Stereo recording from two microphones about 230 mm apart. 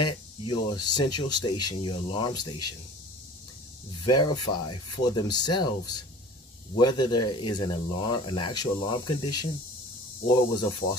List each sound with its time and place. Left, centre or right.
0.0 s speech: centre
4.1 s speech: centre
10.2 s speech: centre